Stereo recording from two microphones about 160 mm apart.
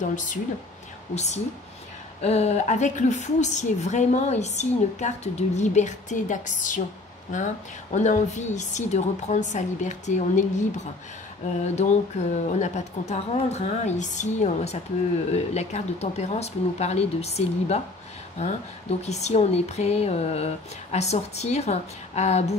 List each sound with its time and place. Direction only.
0.0 s a woman's voice: 55° left (ahead or behind)